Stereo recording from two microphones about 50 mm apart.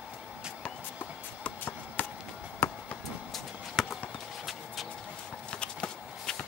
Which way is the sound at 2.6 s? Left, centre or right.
Left.